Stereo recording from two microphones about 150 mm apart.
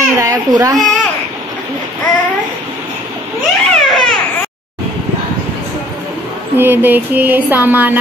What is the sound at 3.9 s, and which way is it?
Baby cry, centre (ahead or behind).